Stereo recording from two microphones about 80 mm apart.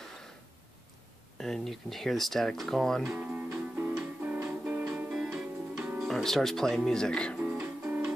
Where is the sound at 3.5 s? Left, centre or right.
Right.